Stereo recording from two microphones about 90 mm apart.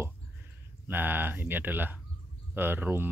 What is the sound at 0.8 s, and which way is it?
Speech, 25° right (ahead or behind).